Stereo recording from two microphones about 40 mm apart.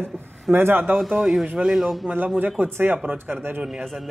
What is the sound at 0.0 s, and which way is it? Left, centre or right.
Speech, right.